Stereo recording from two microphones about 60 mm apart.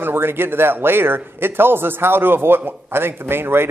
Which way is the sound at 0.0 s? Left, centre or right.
Right.